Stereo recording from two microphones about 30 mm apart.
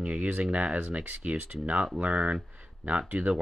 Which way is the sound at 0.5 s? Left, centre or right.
Right.